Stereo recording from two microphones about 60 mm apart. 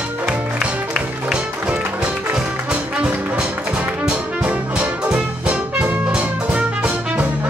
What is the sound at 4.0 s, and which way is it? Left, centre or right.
Music, centre.